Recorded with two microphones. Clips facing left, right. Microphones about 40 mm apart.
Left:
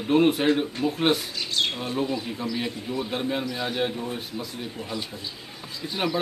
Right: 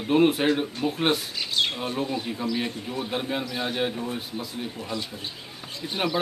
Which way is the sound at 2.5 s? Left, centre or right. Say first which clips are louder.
Right 2 dB; left.